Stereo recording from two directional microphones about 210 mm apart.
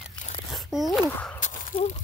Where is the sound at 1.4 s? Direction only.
35° left (ahead or behind).